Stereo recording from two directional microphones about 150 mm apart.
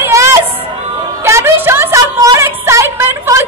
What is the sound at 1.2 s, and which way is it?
Music, 15° right (ahead or behind).